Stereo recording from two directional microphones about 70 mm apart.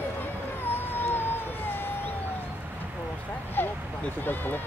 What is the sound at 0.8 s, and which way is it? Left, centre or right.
Emergency vehicle, left.